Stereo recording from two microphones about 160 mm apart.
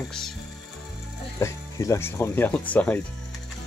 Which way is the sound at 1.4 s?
20° left (ahead or behind).